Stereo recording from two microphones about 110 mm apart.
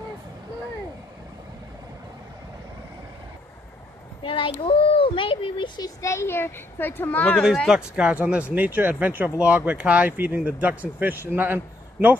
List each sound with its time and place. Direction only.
4.2 s speech: 50° left (ahead or behind)
5.8 s speech: 30° left (ahead or behind); by 7.4 s 15° left (ahead or behind)
7.6 s speech: 5° right (ahead or behind)